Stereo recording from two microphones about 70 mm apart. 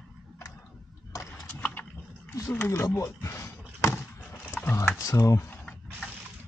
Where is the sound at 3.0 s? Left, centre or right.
Left.